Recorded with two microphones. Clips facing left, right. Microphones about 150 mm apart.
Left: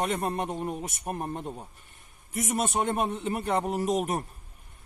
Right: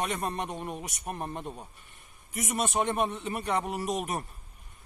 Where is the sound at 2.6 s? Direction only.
45° left (ahead or behind).